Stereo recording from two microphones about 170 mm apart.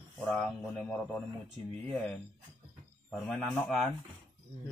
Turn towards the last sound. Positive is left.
turn(degrees=5)  # may be behind; listen again after turning